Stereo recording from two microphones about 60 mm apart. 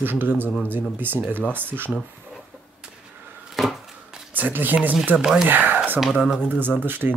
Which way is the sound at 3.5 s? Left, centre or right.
Centre.